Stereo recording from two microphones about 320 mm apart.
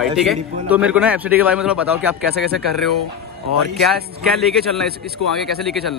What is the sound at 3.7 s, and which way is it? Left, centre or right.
A man's voice, centre.